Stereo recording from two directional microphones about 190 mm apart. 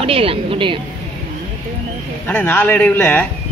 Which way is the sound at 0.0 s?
30° right (ahead or behind).